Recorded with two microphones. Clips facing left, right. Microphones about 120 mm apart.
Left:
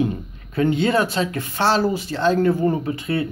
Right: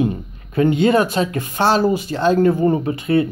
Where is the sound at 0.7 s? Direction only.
50° right (ahead or behind).